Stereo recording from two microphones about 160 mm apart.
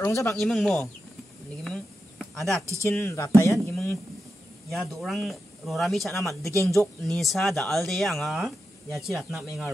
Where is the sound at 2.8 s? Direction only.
15° left (ahead or behind).